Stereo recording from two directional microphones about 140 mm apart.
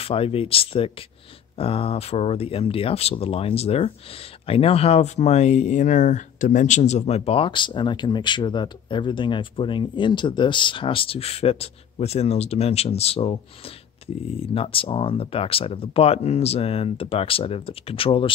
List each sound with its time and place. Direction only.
0.0 s speech: 45° left (ahead or behind)